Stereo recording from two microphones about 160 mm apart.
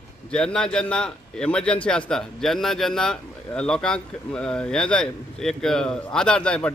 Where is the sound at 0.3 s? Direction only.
5° left (ahead or behind).